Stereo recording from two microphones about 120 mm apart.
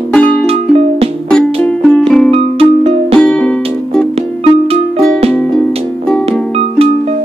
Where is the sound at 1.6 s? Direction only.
10° left (ahead or behind).